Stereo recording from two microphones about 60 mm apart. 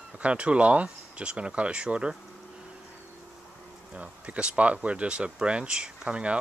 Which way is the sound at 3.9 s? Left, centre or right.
Right.